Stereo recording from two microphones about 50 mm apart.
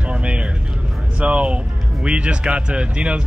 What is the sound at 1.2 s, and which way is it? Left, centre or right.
Speech, right.